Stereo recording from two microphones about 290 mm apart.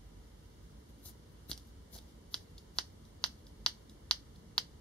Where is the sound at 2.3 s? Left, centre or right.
Centre.